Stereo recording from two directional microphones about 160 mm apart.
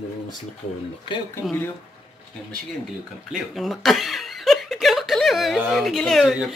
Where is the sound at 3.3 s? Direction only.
Centre (ahead or behind).